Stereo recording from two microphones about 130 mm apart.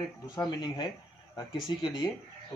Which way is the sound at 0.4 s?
30° left (ahead or behind).